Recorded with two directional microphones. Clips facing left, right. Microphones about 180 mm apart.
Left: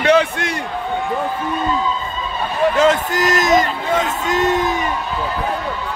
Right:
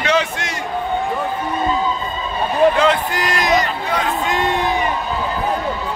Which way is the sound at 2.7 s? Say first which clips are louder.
Left 2 dB; 45° left (ahead or behind).